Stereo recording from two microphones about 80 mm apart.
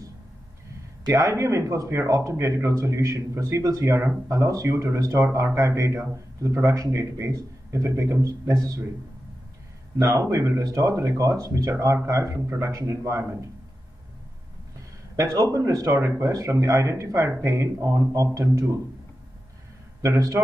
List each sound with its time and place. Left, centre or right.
1.0 s a man's voice: right
9.9 s a man's voice: right
15.1 s a man's voice: right
20.0 s a man's voice: right